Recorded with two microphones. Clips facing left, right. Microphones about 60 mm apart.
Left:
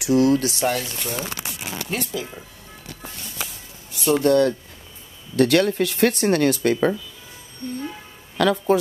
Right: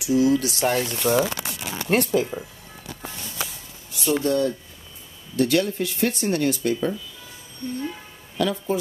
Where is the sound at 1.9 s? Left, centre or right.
Right.